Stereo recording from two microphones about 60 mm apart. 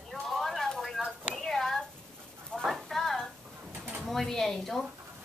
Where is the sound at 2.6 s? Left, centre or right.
Centre.